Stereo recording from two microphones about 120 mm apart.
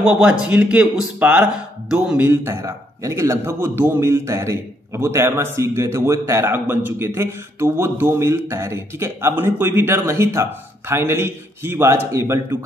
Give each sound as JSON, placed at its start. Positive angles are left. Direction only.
{"t": 0.0, "sound": "a man's voice", "side_deg": -5}